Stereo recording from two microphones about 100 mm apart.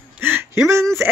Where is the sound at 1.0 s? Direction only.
25° right (ahead or behind).